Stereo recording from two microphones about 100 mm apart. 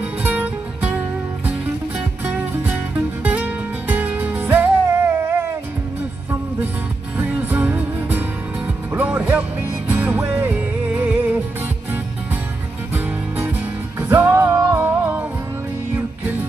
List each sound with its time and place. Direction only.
0.0 s music: 15° right (ahead or behind)
3.3 s music: 15° right (ahead or behind)
7.2 s music: 15° right (ahead or behind)
12.9 s music: 20° right (ahead or behind)